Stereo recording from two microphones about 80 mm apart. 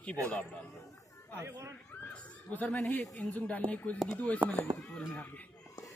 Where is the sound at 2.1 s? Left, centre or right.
Centre.